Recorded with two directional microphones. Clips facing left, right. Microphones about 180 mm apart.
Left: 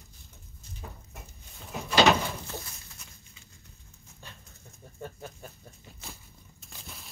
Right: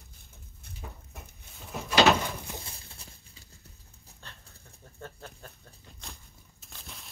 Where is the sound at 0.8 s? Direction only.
Centre (ahead or behind).